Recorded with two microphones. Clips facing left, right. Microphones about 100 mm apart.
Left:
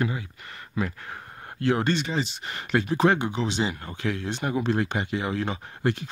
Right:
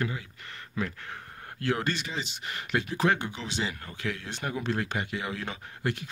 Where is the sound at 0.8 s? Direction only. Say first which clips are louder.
Left 4 dB; 5° left (ahead or behind).